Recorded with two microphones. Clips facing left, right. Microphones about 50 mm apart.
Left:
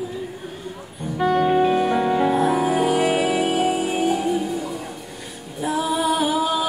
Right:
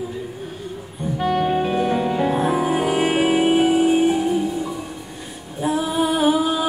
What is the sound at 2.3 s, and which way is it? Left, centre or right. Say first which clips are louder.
Music: left 1 dB; right.